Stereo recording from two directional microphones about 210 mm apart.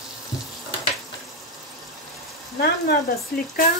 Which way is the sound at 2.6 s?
50° left (ahead or behind).